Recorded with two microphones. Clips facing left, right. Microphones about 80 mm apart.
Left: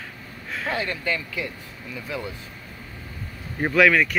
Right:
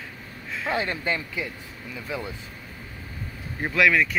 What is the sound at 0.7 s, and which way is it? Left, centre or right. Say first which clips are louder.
Speech: right 1 dB; right.